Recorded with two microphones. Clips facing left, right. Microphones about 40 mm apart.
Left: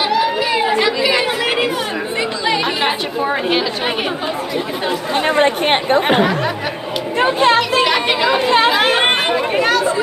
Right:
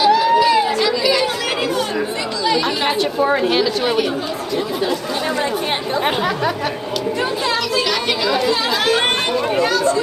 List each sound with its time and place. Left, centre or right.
0.2 s chatter: centre
4.8 s chatter: left
7.2 s chatter: left
7.8 s chatter: left
9.6 s chatter: left